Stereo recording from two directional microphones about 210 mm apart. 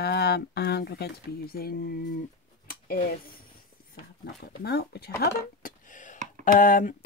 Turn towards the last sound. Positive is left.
turn(degrees=40)  # may be behind; listen again after turning